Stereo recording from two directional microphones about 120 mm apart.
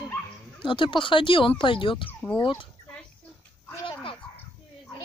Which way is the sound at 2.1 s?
15° left (ahead or behind).